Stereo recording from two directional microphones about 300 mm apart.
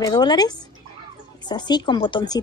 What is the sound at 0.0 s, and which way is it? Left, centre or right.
Speech, centre.